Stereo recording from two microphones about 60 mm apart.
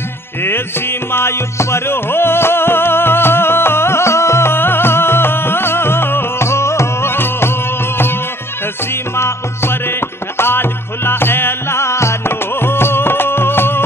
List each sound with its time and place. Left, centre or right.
1.1 s music: left
9.1 s music: left